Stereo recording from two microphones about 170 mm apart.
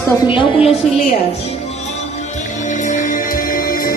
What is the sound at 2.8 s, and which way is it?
Music, 50° left (ahead or behind).